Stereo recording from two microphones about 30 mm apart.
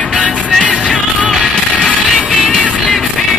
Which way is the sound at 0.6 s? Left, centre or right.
Right.